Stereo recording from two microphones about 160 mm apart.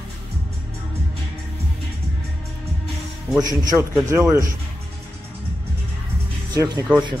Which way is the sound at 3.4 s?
20° right (ahead or behind).